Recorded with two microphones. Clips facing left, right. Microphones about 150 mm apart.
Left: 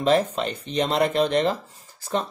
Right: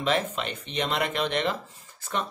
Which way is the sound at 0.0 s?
35° left (ahead or behind).